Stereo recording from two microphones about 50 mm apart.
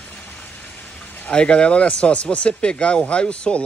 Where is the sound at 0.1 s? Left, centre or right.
Centre.